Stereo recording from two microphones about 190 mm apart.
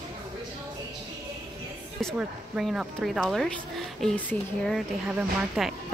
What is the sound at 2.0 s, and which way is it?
A woman's voice, centre (ahead or behind).